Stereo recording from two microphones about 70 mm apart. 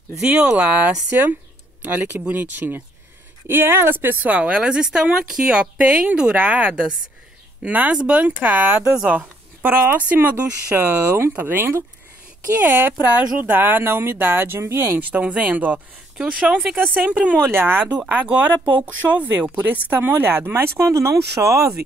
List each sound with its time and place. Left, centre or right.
0.6 s speech: right
8.9 s speech: centre
9.2 s a sound: right
9.9 s speech: right
15.0 s speech: right
17.4 s speech: right
20.9 s speech: right